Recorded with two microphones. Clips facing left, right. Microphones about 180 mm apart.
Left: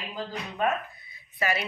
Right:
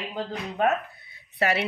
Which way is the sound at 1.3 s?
70° right (ahead or behind).